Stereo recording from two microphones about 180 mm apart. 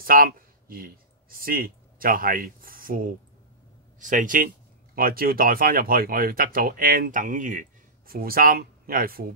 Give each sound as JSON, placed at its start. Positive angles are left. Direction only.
{"t": 0.0, "sound": "speech", "side_deg": -55}